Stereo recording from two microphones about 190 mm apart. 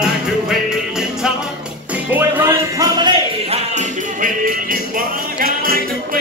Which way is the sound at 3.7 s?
45° right (ahead or behind).